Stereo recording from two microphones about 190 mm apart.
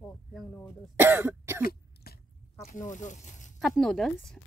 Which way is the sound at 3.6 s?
Centre (ahead or behind).